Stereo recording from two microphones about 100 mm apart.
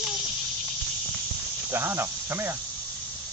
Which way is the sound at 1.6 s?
25° right (ahead or behind).